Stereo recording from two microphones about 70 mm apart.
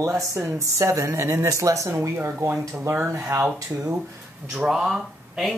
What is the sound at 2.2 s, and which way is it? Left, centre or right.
Speech, right.